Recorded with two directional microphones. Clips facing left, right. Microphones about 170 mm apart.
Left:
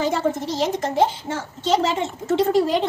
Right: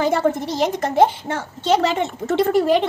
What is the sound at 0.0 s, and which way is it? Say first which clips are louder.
A woman's voice: right 3 dB; 60° right (ahead or behind).